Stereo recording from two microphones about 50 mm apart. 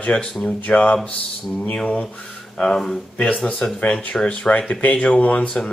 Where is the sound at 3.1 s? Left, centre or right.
Left.